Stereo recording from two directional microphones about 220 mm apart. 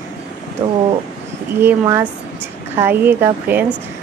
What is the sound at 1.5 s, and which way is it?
A woman's voice, 10° right (ahead or behind).